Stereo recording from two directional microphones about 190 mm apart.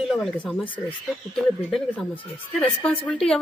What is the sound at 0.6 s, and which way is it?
Speech, 25° left (ahead or behind).